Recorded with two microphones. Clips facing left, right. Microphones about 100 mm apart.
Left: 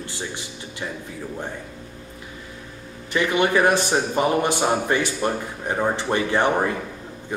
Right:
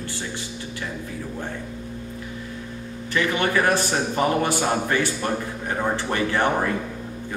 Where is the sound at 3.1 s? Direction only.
20° left (ahead or behind).